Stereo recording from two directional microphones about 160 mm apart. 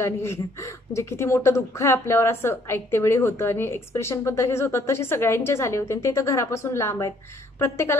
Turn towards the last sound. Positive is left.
turn(degrees=15)  # may be behind; listen again after turning